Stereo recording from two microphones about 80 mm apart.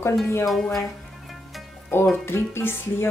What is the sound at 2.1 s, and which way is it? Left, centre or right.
Speech, left.